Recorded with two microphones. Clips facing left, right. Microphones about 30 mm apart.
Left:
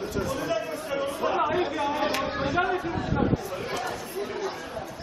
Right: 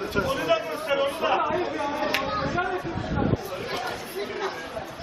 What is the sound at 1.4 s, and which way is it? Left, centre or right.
Speech, centre.